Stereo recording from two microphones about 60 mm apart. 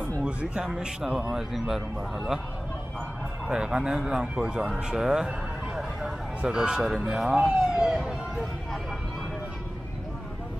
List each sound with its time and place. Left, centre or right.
0.2 s a sound: centre
0.7 s speech: centre
3.4 s speech: centre